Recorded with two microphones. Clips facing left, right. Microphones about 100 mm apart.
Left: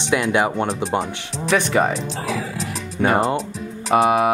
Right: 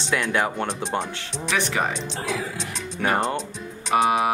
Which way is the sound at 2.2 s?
Centre (ahead or behind).